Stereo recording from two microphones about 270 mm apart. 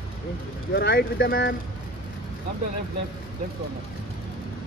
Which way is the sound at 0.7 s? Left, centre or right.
Left.